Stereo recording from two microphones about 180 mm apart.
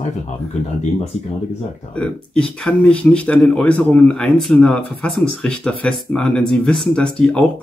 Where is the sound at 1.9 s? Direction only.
5° left (ahead or behind).